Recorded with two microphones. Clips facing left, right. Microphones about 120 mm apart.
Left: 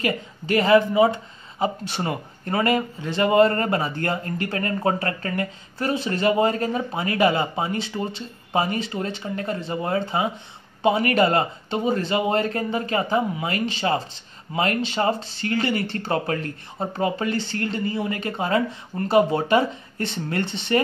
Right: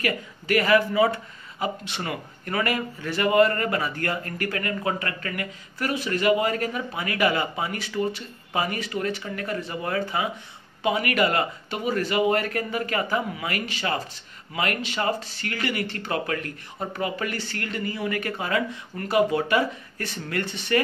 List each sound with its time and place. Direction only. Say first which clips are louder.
0.0 s speech: left 2 dB; 25° left (ahead or behind)